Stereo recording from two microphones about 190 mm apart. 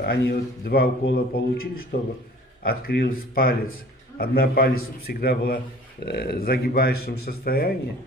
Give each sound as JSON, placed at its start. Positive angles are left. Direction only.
{"t": 0.0, "sound": "a man's voice", "side_deg": 55}